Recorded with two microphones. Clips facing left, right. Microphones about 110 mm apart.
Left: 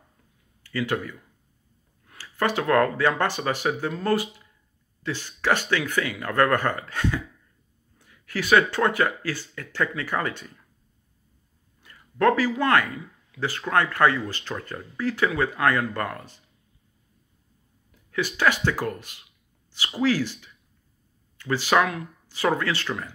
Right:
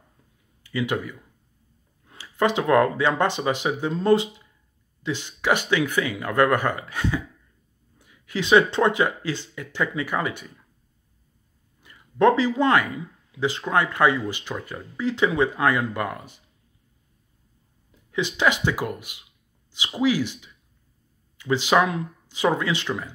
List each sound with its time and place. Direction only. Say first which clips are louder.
0.7 s speech: right 1 dB; 15° right (ahead or behind)
11.8 s speech: right 3 dB; 20° right (ahead or behind)
18.1 s speech: right 1 dB; 20° right (ahead or behind)